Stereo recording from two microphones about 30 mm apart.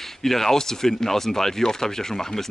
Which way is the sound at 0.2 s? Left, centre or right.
Centre.